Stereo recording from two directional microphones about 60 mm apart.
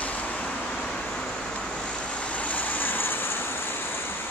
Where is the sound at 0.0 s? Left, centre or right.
Left.